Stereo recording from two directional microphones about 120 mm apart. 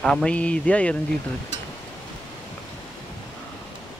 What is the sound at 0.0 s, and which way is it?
Speech, 5° left (ahead or behind).